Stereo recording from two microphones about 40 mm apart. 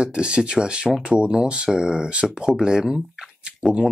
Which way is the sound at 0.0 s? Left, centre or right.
Right.